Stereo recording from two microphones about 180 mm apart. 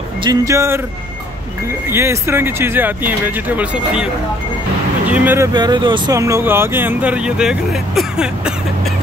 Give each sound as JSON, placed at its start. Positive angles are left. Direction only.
{"t": 0.2, "sound": "speech", "side_deg": -20}
{"t": 1.9, "sound": "speech", "side_deg": -15}
{"t": 5.1, "sound": "speech", "side_deg": -10}
{"t": 5.5, "sound": "speech", "side_deg": -25}